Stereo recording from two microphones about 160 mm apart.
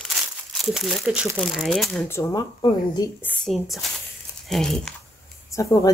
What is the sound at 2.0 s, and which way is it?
A woman's voice, 20° left (ahead or behind).